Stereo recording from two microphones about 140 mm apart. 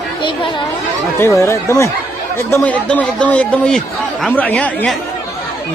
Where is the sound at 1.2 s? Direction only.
20° left (ahead or behind).